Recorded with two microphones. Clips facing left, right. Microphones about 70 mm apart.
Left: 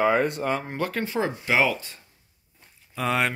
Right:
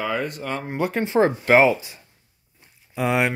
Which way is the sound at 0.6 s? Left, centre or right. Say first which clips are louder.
Right 4 dB; centre.